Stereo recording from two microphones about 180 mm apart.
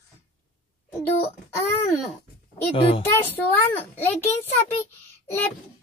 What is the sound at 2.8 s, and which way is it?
Speech, 30° left (ahead or behind).